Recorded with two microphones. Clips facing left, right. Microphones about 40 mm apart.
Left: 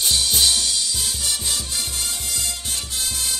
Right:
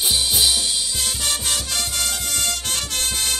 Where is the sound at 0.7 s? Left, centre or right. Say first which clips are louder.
Even; centre.